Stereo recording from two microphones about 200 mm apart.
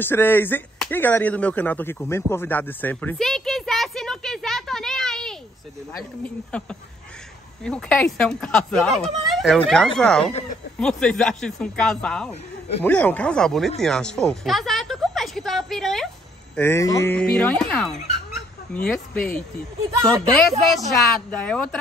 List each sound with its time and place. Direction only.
0.0 s speech: 10° left (ahead or behind)
16.5 s speech: 15° left (ahead or behind)
20.0 s speech: 15° right (ahead or behind)
21.3 s speech: 5° left (ahead or behind)